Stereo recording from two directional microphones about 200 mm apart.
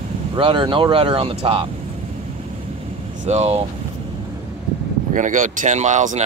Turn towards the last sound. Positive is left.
turn(degrees=-35)  # may be behind; listen again after turning